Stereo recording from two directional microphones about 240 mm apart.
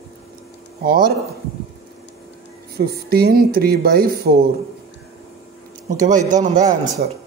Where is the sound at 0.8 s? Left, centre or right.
Right.